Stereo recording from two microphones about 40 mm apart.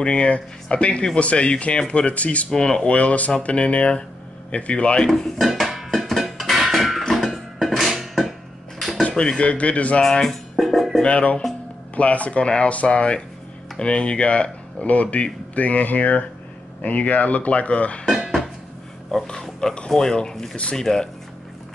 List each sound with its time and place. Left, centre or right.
0.0 s speech: left
2.5 s speech: left
5.4 s dishes: centre
5.9 s music: centre
6.3 s a sound: centre
7.2 s music: centre
9.1 s speech: centre
9.4 s speech: left
10.5 s music: centre
11.1 s speech: left
18.1 s dishes: centre
20.0 s speech: centre